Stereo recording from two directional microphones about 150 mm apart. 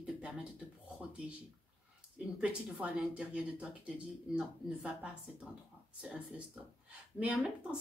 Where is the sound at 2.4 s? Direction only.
10° right (ahead or behind).